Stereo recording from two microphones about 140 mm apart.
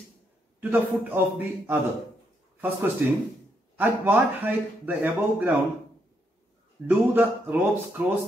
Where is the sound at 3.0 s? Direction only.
15° right (ahead or behind).